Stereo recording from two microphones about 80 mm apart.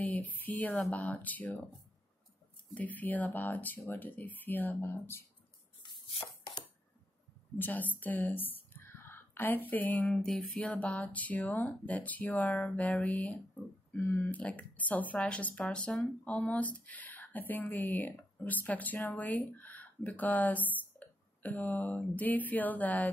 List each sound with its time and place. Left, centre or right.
0.0 s speech: left
2.7 s speech: left
7.5 s whispering: left
9.7 s a sound: left
10.6 s speech: centre
15.1 s a sound: centre
15.6 s speech: centre